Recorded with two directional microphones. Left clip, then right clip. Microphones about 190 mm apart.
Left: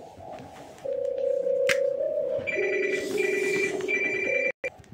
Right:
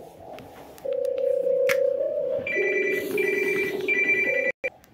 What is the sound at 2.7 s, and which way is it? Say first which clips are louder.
Telephone bell ringing: right 2 dB; 40° right (ahead or behind).